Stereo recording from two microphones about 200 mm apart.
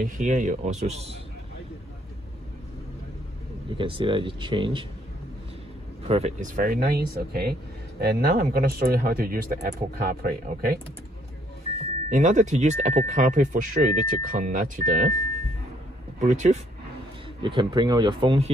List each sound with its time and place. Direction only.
0.0 s speech: 40° right (ahead or behind)
3.7 s speech: 25° right (ahead or behind)
6.0 s speech: 30° right (ahead or behind)
12.1 s speech: 35° right (ahead or behind)
16.2 s speech: 35° right (ahead or behind)
17.4 s speech: 25° right (ahead or behind)